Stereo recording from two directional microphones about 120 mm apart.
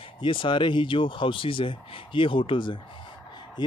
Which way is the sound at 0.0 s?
45° left (ahead or behind).